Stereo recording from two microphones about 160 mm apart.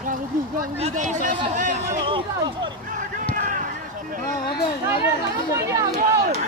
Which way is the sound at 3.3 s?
60° right (ahead or behind).